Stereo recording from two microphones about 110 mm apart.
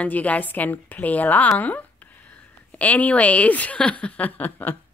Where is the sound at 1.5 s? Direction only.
15° left (ahead or behind).